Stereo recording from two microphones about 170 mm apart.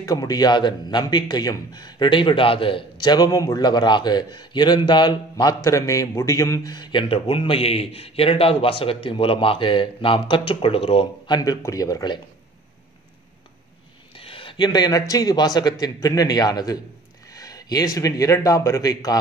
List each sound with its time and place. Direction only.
0.0 s a man's voice: 20° left (ahead or behind)
14.1 s a man's voice: 30° left (ahead or behind)
17.3 s a sound: 20° left (ahead or behind)
17.9 s a man's voice: 20° left (ahead or behind)